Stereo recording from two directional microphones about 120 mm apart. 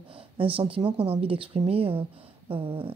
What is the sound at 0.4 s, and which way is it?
A woman's voice, 50° right (ahead or behind).